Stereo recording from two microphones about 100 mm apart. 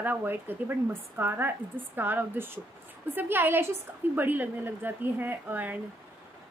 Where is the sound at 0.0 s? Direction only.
20° right (ahead or behind).